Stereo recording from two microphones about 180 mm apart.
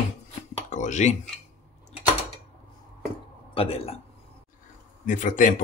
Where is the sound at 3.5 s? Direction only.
35° left (ahead or behind).